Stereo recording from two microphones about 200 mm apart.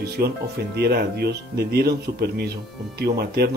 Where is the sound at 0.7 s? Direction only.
55° right (ahead or behind).